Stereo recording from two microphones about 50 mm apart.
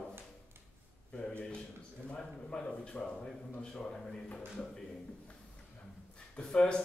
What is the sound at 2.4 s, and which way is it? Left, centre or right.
A man's voice, centre.